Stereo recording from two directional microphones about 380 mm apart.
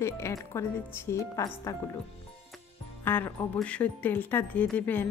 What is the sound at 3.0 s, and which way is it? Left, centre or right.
A woman's voice, centre.